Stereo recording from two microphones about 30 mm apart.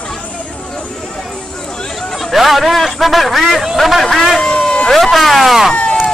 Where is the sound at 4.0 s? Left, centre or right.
Centre.